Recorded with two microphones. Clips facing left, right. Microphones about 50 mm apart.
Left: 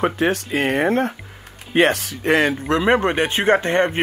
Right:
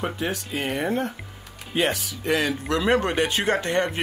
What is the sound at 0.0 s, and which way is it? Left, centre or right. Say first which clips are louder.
Speech: left 8 dB; left.